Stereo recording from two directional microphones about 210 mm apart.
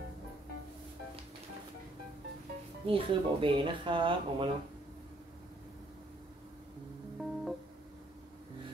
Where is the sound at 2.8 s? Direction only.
25° right (ahead or behind).